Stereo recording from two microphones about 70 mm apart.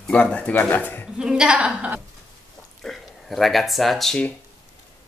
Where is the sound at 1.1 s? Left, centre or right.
Centre.